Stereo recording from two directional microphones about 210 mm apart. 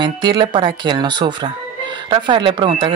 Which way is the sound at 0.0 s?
20° right (ahead or behind).